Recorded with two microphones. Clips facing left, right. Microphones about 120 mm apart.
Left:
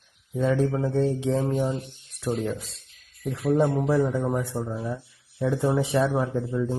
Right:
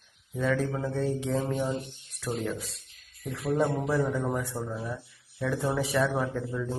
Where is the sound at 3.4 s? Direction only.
25° left (ahead or behind).